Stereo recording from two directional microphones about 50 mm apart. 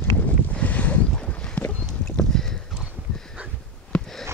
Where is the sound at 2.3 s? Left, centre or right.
Centre.